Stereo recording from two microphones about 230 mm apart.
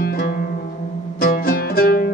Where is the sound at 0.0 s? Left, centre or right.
Left.